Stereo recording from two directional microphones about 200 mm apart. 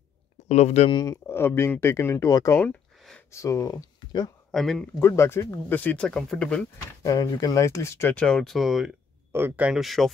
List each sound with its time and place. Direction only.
0.5 s speech: 35° left (ahead or behind)
4.5 s speech: centre (ahead or behind)
5.0 s speech: 15° left (ahead or behind)
7.0 s speech: 15° left (ahead or behind); by 10.1 s centre (ahead or behind)